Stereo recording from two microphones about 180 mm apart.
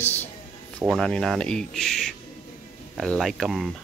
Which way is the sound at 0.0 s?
10° left (ahead or behind).